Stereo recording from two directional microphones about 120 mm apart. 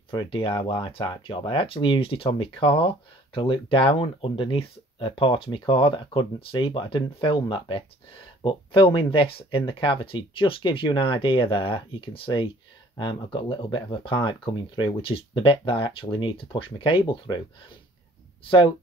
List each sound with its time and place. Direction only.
0.1 s speech: 45° left (ahead or behind)